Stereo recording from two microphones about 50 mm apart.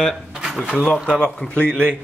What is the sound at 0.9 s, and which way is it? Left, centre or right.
Speech, centre.